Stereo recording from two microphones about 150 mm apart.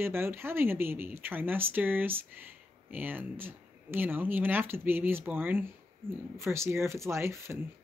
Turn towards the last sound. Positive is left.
turn(degrees=-15)  # may be behind; listen again after turning